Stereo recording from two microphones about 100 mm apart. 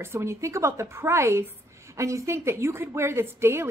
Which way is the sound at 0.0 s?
25° right (ahead or behind).